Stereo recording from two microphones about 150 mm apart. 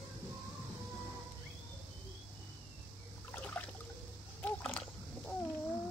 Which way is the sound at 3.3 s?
10° left (ahead or behind).